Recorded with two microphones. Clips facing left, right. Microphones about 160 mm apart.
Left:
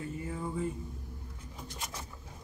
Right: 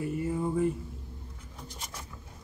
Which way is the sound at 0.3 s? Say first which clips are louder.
Right 7 dB; 25° right (ahead or behind).